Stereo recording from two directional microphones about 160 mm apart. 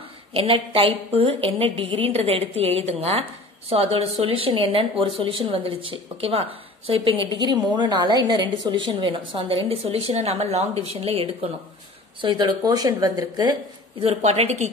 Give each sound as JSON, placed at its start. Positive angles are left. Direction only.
{"t": 0.3, "sound": "a woman's voice", "side_deg": -35}
{"t": 12.2, "sound": "speech", "side_deg": -25}
{"t": 14.0, "sound": "a woman's voice", "side_deg": -40}